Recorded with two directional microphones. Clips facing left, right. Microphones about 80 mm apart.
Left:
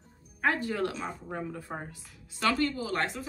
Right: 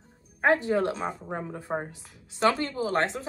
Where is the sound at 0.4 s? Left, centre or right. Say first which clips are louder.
Right 5 dB; right.